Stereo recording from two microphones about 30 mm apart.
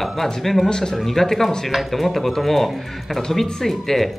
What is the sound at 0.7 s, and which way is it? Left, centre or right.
Speech, centre.